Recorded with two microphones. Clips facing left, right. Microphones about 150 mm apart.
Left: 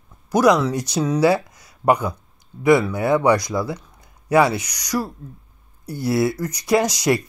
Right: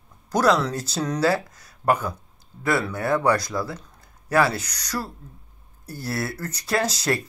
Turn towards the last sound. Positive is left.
turn(degrees=15)  # may be behind; listen again after turning